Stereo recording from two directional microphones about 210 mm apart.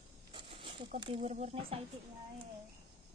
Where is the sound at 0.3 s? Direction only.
25° right (ahead or behind).